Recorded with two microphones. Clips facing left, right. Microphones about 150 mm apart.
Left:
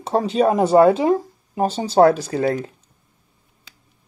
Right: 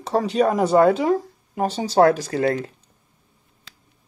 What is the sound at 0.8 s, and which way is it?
Speech, 5° left (ahead or behind).